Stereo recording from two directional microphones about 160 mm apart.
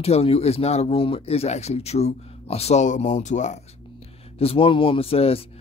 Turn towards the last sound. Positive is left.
turn(degrees=35)  # may be behind; listen again after turning